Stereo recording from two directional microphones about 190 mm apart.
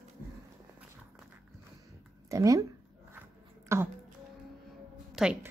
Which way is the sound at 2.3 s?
15° right (ahead or behind).